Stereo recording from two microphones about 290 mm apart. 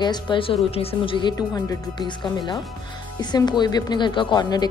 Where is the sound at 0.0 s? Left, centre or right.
Centre.